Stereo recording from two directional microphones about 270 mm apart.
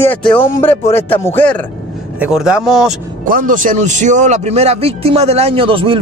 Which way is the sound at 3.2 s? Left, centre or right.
Right.